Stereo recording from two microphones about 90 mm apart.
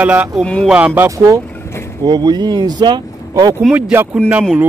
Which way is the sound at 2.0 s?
50° right (ahead or behind).